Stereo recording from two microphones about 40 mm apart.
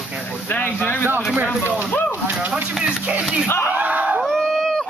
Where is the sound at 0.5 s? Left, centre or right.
Left.